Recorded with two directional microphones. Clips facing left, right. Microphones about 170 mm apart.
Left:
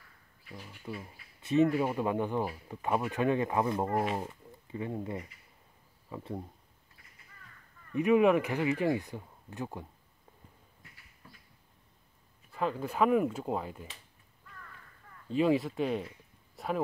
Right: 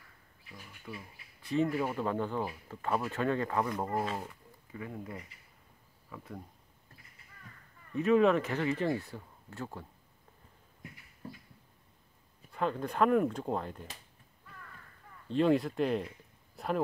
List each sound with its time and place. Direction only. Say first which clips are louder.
0.6 s speech: left 4 dB; 25° left (ahead or behind)
7.9 s speech: left 1 dB; 15° left (ahead or behind)
11.2 s a sound: right 11 dB; 35° right (ahead or behind)
12.5 s speech: even; 5° left (ahead or behind)
15.2 s speech: even; 5° left (ahead or behind)